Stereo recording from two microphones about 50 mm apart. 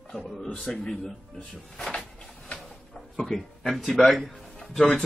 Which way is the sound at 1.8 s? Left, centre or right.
Centre.